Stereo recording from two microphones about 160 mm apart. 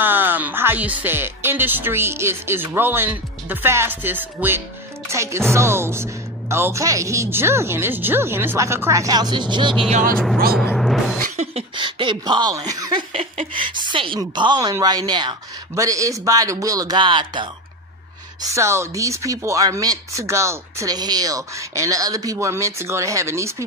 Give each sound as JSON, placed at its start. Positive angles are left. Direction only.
{"t": 0.0, "sound": "speech", "side_deg": -10}
{"t": 10.1, "sound": "speech", "side_deg": 5}
{"t": 10.5, "sound": "music", "side_deg": 5}
{"t": 11.1, "sound": "a sound", "side_deg": -55}
{"t": 11.5, "sound": "speech", "side_deg": -30}
{"t": 13.1, "sound": "speech", "side_deg": -40}
{"t": 18.4, "sound": "speech", "side_deg": -20}